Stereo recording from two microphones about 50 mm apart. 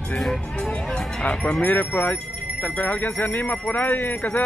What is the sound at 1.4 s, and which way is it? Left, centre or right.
Speech, left.